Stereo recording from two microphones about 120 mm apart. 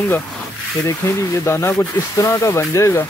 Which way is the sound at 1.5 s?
25° left (ahead or behind).